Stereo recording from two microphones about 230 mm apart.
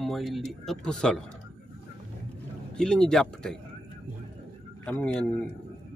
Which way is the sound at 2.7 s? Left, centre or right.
Centre.